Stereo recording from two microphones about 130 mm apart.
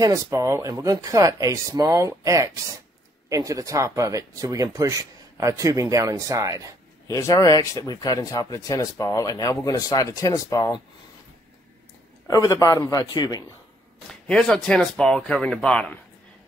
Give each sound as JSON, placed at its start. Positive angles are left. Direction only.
{"t": 0.0, "sound": "speech", "side_deg": -25}
{"t": 7.1, "sound": "speech", "side_deg": 25}
{"t": 12.3, "sound": "speech", "side_deg": 30}
{"t": 14.2, "sound": "speech", "side_deg": 5}